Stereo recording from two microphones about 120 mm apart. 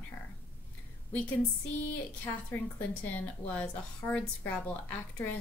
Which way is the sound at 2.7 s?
15° left (ahead or behind).